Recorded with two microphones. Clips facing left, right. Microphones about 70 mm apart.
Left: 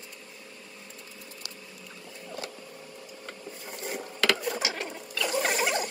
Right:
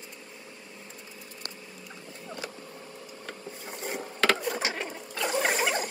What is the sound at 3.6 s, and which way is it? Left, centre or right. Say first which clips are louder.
Ratchet: right 1 dB; centre.